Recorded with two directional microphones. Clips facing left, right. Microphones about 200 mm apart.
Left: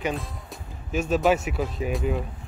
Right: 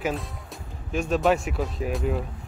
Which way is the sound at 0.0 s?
Centre (ahead or behind).